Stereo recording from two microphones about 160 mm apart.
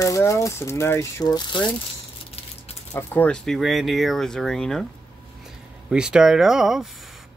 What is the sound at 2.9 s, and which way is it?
Speech, 10° left (ahead or behind).